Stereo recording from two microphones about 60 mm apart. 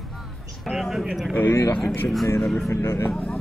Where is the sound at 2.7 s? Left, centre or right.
Left.